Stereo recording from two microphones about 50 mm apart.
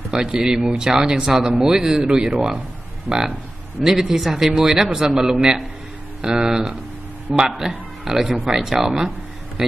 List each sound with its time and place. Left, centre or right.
0.1 s speech: centre